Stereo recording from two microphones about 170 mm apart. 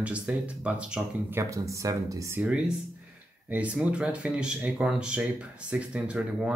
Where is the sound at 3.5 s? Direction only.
10° right (ahead or behind).